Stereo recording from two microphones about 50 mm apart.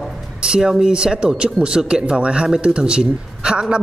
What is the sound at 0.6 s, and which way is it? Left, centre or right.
Speech, centre.